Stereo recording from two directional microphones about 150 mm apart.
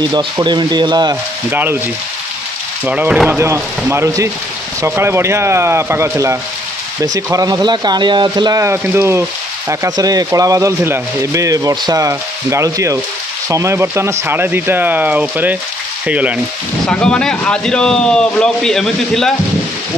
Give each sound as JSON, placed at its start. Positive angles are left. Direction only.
{"t": 0.0, "sound": "speech", "side_deg": -30}
{"t": 1.5, "sound": "speech", "side_deg": -15}
{"t": 2.8, "sound": "speech", "side_deg": -10}
{"t": 8.5, "sound": "speech", "side_deg": -15}
{"t": 16.8, "sound": "speech", "side_deg": 5}